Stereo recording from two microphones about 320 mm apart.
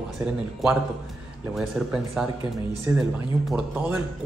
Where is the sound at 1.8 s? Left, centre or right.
Centre.